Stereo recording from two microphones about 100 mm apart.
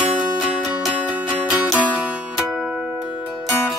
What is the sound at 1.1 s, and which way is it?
Music, 10° right (ahead or behind).